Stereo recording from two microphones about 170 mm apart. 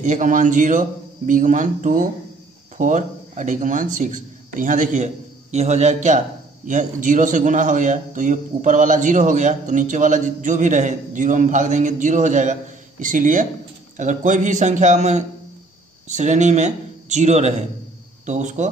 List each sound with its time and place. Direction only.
0.0 s a man's voice: 50° right (ahead or behind)